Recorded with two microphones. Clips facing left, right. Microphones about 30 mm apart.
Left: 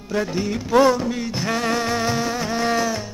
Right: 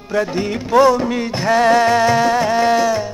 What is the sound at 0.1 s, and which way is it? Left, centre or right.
Music, centre.